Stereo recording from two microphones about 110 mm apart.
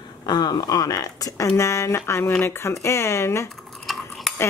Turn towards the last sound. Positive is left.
turn(degrees=0)  # may be behind; listen again after turning